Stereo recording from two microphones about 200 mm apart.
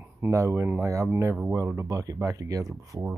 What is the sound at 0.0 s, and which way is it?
Speech, 10° right (ahead or behind).